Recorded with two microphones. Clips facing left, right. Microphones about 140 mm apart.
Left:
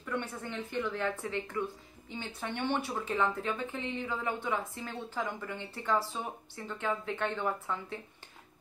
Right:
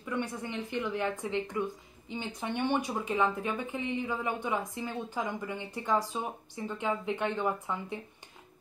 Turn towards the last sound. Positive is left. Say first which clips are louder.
# right 2 dB
turn(degrees=-15)  # may be behind; listen again after turning